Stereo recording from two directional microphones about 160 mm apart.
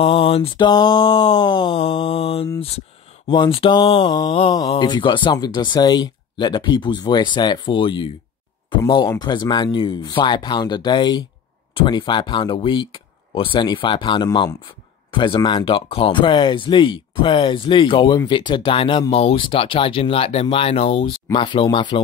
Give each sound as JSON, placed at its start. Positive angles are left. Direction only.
{"t": 0.0, "sound": "speech", "side_deg": 35}